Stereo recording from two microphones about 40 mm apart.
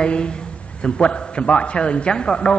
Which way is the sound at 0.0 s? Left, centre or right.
Left.